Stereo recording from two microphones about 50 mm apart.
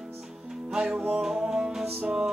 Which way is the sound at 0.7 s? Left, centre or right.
Centre.